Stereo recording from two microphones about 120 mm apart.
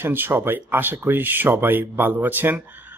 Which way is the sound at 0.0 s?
15° right (ahead or behind).